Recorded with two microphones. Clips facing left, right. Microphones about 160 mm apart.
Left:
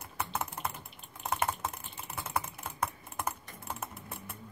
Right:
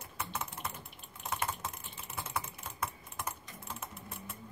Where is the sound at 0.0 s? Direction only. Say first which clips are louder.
Left 4 dB; 60° left (ahead or behind).